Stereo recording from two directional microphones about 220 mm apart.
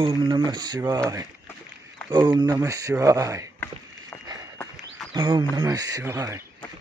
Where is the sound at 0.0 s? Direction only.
25° right (ahead or behind).